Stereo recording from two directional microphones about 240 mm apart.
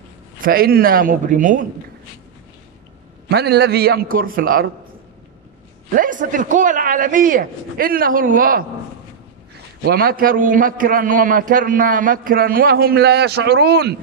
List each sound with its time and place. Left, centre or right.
0.4 s a man's voice: right
3.3 s a man's voice: right
5.9 s a man's voice: right
9.8 s a man's voice: right